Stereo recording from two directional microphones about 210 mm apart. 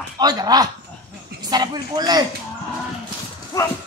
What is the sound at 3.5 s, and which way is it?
Speech, 15° left (ahead or behind).